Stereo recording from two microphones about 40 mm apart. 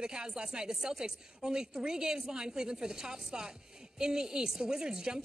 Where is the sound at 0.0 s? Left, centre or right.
Centre.